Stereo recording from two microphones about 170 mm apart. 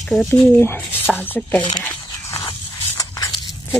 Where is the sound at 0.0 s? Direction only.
Centre (ahead or behind).